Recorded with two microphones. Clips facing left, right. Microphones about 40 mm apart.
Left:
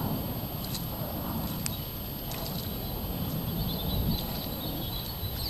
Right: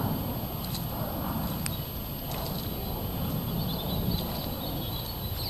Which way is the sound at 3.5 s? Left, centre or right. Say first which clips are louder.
Right 1 dB; centre.